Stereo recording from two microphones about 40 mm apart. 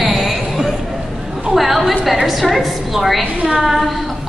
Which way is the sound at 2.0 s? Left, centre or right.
Centre.